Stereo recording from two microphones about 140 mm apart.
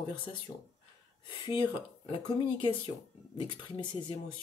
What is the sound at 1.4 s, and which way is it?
Speech, 30° left (ahead or behind).